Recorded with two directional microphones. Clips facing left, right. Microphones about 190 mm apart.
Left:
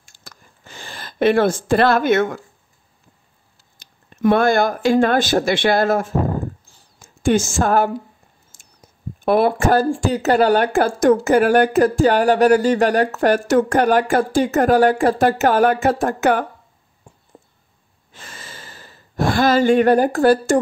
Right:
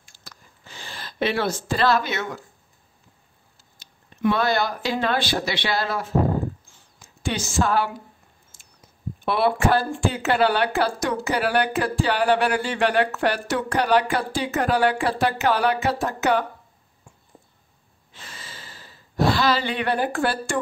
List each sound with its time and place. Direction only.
0.0 s a sound: 50° left (ahead or behind)
1.7 s speech: 55° left (ahead or behind)
3.8 s speech: 50° left (ahead or behind)
6.7 s a sound: 40° left (ahead or behind)
9.8 s speech: 40° left (ahead or behind)
18.1 s speech: 45° left (ahead or behind)